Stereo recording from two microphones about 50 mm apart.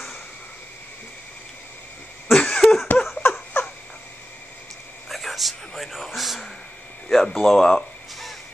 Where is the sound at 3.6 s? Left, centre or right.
Left.